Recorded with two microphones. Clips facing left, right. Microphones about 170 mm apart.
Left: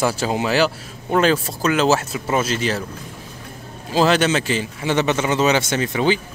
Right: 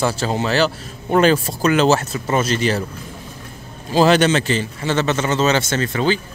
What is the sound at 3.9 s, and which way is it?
A man's voice, centre (ahead or behind).